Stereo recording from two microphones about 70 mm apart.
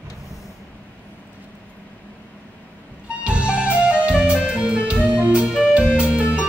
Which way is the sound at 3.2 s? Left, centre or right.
Centre.